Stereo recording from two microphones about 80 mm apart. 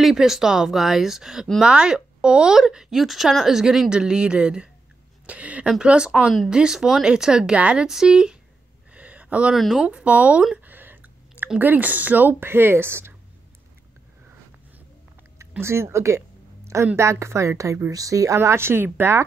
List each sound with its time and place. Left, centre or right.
0.0 s speech: centre
8.9 s a sound: centre
9.8 s speech: centre; by 13.1 s right
15.6 s speech: right